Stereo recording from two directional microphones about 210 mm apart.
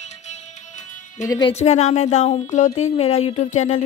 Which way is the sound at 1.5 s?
30° left (ahead or behind).